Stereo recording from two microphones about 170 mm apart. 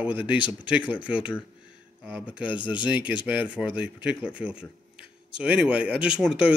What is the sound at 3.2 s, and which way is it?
Speech, 10° right (ahead or behind).